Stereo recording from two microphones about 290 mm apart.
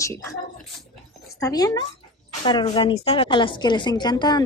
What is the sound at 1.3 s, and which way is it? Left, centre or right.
A woman's voice, centre.